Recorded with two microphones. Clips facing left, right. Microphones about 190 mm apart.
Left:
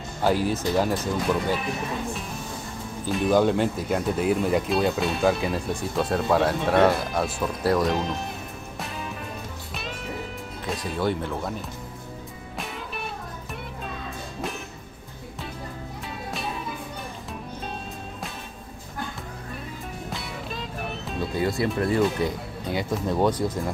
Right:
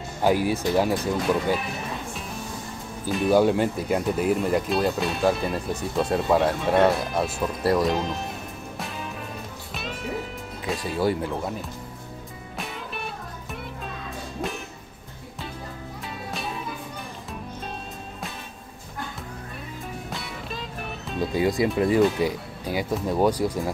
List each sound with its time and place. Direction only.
0.2 s speech: 15° right (ahead or behind)
3.1 s speech: 5° right (ahead or behind)
10.6 s speech: 5° right (ahead or behind)
12.5 s music: centre (ahead or behind)
16.3 s music: centre (ahead or behind)
20.1 s music: centre (ahead or behind)
21.4 s speech: 15° right (ahead or behind)